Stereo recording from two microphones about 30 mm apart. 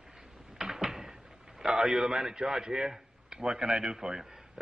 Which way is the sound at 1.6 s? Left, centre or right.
Centre.